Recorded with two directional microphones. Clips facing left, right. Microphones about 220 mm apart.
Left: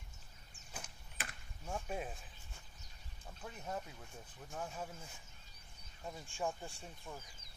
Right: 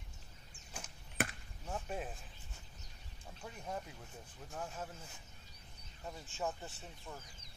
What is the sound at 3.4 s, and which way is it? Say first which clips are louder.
Speech: even; centre (ahead or behind).